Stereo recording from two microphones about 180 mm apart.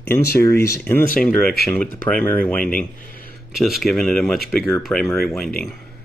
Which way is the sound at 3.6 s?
Centre (ahead or behind).